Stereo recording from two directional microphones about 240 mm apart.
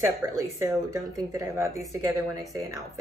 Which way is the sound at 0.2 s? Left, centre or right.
Centre.